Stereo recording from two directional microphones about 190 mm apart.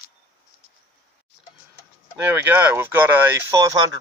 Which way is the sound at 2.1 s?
10° right (ahead or behind).